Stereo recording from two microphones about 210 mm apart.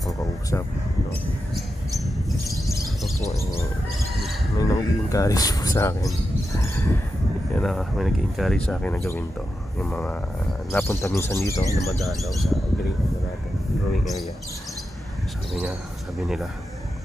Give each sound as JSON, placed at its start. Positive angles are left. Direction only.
{"t": 1.5, "sound": "a sound", "side_deg": 0}
{"t": 3.3, "sound": "speech", "side_deg": 15}
{"t": 12.0, "sound": "speech", "side_deg": 0}